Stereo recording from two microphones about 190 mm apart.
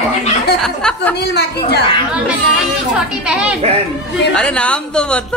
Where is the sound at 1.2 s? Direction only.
60° left (ahead or behind).